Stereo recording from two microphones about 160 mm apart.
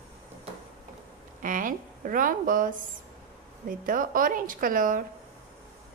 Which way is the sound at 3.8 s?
60° right (ahead or behind).